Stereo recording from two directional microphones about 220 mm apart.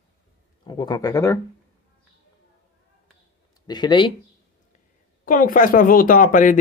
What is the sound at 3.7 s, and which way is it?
Speech, 20° left (ahead or behind).